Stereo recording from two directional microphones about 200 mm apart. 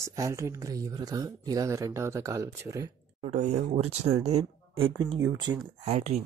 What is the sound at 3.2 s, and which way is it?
Speech, 35° right (ahead or behind).